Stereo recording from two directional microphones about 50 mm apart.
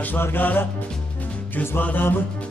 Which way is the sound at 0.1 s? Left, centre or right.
Left.